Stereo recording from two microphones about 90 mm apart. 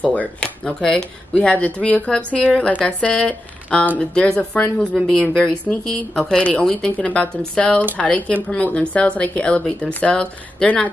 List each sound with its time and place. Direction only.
0.0 s speech: 15° left (ahead or behind)